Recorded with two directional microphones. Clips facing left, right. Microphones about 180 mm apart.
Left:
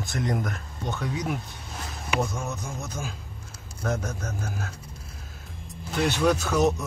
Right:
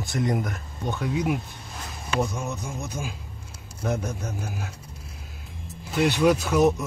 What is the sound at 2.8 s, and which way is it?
Speech, 15° right (ahead or behind).